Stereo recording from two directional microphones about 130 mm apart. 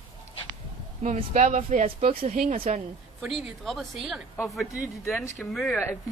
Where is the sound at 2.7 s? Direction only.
70° right (ahead or behind).